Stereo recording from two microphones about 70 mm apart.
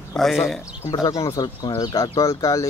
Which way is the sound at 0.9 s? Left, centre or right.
Left.